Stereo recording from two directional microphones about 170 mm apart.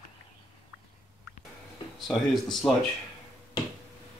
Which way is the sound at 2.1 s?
5° left (ahead or behind).